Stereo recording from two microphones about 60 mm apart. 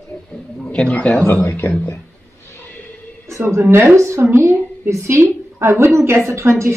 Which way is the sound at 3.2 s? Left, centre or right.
Right.